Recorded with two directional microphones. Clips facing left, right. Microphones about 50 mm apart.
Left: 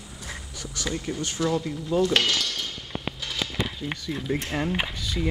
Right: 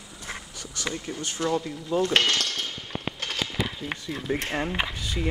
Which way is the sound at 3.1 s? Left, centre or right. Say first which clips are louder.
Right 1 dB; right.